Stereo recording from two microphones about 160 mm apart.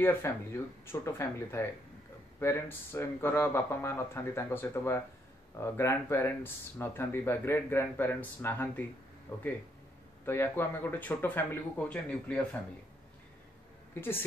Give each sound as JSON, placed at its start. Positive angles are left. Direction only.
{"t": 0.0, "sound": "speech", "side_deg": 15}